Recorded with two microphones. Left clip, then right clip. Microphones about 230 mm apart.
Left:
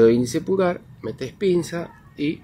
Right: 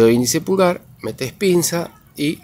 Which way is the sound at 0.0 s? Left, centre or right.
Right.